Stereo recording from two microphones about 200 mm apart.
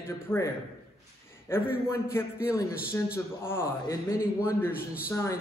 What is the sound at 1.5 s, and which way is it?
A man's voice, 10° left (ahead or behind).